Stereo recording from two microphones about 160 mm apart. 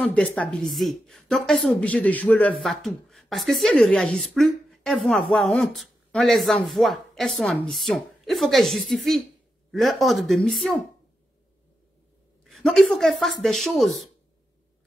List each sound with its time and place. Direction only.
0.0 s a woman's voice: 5° left (ahead or behind)
12.4 s speech: centre (ahead or behind)